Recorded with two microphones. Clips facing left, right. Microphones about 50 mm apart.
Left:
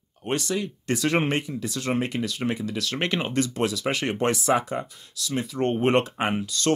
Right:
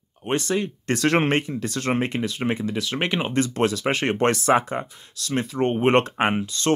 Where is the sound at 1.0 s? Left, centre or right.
Right.